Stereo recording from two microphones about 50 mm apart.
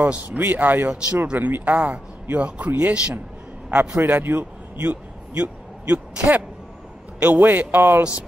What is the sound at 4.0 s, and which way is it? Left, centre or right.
A man's voice, right.